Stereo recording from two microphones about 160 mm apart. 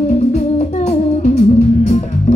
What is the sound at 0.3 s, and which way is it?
Music, 45° left (ahead or behind).